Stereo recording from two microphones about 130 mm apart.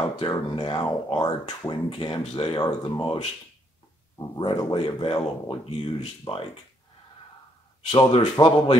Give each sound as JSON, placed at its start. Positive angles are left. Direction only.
{"t": 0.2, "sound": "speech", "side_deg": 40}
{"t": 4.4, "sound": "speech", "side_deg": 40}
{"t": 7.9, "sound": "speech", "side_deg": 35}